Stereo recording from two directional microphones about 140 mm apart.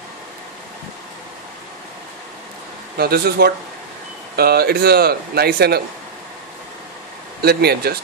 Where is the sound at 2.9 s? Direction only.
90° right.